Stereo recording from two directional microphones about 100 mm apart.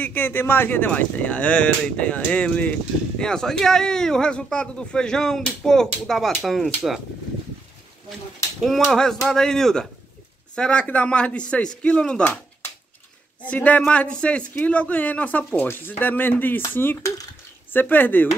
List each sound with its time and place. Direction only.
0.0 s a man's voice: 20° left (ahead or behind); by 7.0 s centre (ahead or behind)
8.5 s a man's voice: centre (ahead or behind)
13.4 s a man's voice: 15° left (ahead or behind)